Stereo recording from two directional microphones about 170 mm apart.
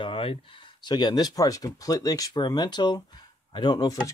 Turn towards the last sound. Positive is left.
turn(degrees=25)  # may be behind; listen again after turning